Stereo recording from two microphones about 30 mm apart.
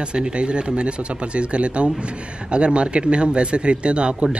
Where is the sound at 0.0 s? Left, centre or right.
Right.